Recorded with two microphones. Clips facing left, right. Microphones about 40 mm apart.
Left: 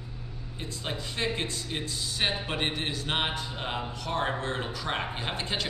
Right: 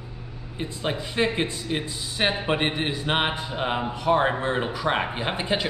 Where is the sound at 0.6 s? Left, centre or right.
Right.